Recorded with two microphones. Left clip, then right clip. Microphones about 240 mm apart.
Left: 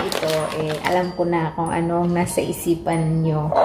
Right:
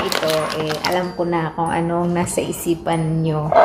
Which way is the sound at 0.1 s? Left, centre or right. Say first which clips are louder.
Right 3 dB; centre.